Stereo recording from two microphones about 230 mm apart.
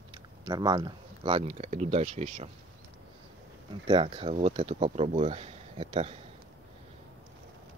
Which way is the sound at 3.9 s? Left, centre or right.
Right.